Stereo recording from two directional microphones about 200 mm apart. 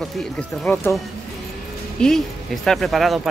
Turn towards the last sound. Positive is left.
turn(degrees=0)  # may be behind; listen again after turning